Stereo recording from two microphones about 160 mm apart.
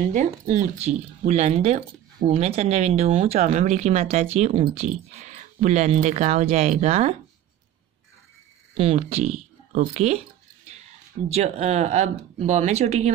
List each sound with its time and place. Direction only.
0.7 s speech: 45° right (ahead or behind)
8.7 s speech: 40° right (ahead or behind)
11.2 s speech: 45° right (ahead or behind)